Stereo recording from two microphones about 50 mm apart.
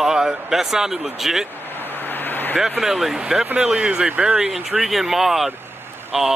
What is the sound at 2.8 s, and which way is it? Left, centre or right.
Speech, centre.